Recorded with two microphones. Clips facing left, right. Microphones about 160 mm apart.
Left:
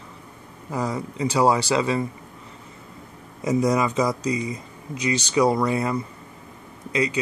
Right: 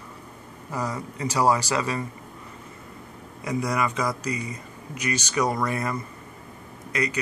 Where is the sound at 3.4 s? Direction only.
20° left (ahead or behind).